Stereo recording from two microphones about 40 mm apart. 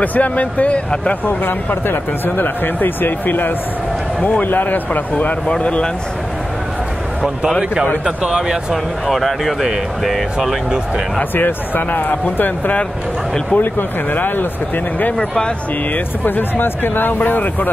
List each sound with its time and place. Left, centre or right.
0.0 s speech: left
1.2 s speech: left
5.6 s speech: left
8.0 s speech: right
9.0 s speech: centre
11.3 s speech: left
15.1 s speech: left
15.9 s speech: left